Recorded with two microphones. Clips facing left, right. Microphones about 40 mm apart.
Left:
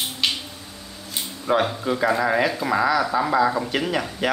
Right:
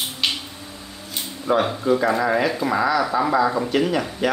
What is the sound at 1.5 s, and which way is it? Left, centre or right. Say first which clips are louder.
Speech: right 1 dB; left.